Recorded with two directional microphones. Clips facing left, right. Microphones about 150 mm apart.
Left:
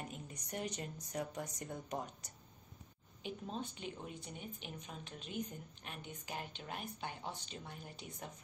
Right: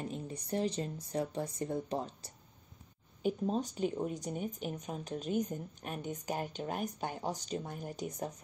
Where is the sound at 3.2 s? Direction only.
40° right (ahead or behind).